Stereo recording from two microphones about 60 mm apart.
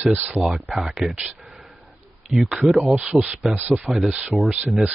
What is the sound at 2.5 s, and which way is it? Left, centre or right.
Speech, centre.